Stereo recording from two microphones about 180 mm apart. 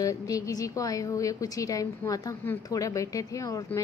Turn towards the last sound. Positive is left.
turn(degrees=20)  # may be behind; listen again after turning